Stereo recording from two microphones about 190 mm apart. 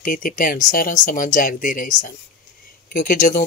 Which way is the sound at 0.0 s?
45° left (ahead or behind).